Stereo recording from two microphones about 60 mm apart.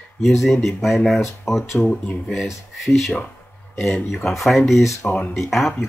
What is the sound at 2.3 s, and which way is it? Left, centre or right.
Speech, centre.